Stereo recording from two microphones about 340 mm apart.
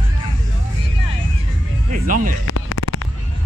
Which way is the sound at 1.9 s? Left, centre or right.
Right.